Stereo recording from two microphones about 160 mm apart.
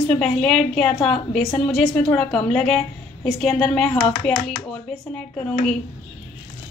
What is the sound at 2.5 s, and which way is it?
Speech, 5° left (ahead or behind).